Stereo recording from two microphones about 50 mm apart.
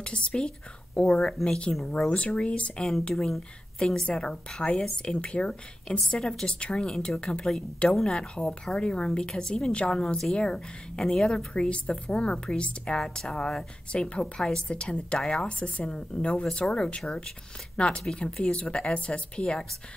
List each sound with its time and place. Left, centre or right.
0.0 s a woman's voice: centre
2.0 s speech: left
3.2 s a woman's voice: centre; by 19.6 s left